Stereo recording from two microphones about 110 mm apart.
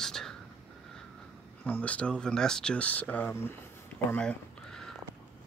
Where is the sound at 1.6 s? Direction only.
15° left (ahead or behind).